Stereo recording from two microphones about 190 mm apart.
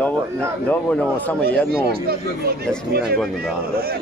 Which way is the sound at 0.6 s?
10° left (ahead or behind).